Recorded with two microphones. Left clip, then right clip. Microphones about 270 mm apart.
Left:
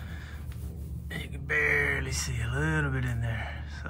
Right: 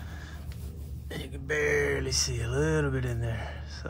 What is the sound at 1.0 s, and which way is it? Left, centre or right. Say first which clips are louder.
Speech: even; centre.